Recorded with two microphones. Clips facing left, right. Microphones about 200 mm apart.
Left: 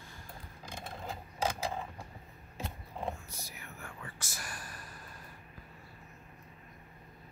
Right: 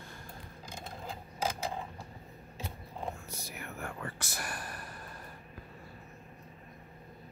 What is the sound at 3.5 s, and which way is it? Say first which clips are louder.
Whispering: right 7 dB; 65° right (ahead or behind).